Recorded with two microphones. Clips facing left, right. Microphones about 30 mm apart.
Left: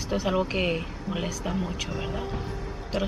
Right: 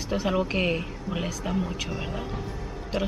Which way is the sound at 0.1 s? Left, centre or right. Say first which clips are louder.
Even; centre.